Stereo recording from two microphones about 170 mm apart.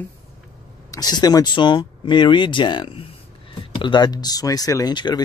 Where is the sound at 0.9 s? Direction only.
25° left (ahead or behind).